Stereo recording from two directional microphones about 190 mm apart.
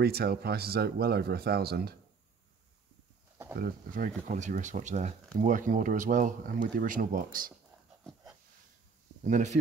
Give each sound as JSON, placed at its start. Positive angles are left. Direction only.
{"t": 0.0, "sound": "speech", "side_deg": -55}
{"t": 3.5, "sound": "speech", "side_deg": -50}
{"t": 8.0, "sound": "a sound", "side_deg": 0}
{"t": 9.2, "sound": "speech", "side_deg": -40}